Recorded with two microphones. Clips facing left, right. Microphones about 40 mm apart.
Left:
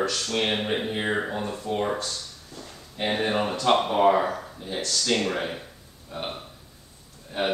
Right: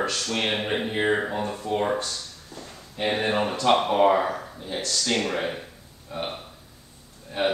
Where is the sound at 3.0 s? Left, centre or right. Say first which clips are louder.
Right 1 dB; centre.